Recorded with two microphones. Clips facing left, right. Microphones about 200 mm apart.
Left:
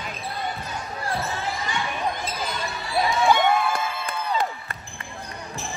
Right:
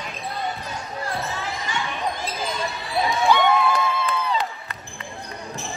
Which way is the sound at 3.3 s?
50° left (ahead or behind).